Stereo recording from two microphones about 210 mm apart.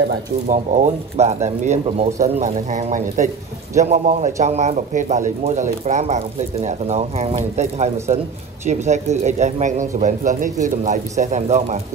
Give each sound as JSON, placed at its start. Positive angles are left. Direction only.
{"t": 0.5, "sound": "speech", "side_deg": -35}